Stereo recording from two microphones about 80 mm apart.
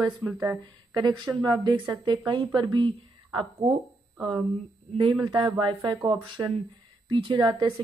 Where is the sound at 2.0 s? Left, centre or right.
Right.